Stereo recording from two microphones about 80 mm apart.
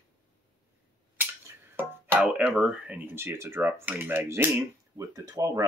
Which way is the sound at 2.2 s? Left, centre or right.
Centre.